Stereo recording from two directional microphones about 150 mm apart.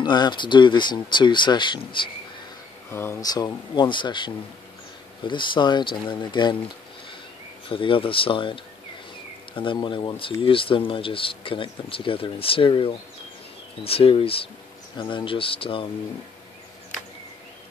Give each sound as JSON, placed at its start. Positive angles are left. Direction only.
{"t": 0.0, "sound": "speech", "side_deg": 30}
{"t": 2.9, "sound": "speech", "side_deg": 15}
{"t": 7.7, "sound": "speech", "side_deg": 35}